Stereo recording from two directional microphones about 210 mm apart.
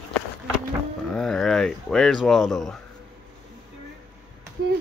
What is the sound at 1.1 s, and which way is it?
Speech, centre (ahead or behind).